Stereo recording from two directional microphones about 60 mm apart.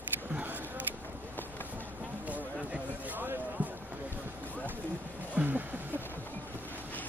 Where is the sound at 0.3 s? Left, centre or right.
Right.